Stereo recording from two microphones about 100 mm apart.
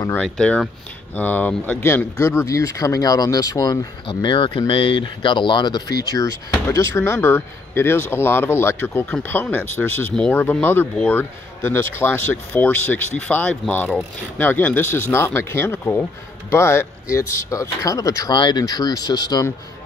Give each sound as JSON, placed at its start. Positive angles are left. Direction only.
{"t": 0.1, "sound": "speech", "side_deg": 10}
{"t": 4.1, "sound": "speech", "side_deg": 55}
{"t": 6.7, "sound": "speech", "side_deg": 30}
{"t": 18.3, "sound": "speech", "side_deg": 45}